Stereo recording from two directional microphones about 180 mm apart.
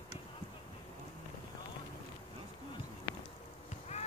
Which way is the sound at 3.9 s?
40° left (ahead or behind).